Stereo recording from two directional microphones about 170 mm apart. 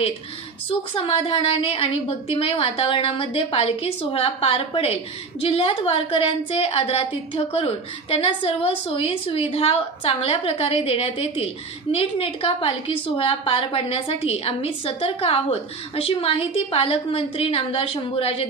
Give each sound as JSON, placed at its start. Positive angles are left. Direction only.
{"t": 0.7, "sound": "a woman's voice", "side_deg": 30}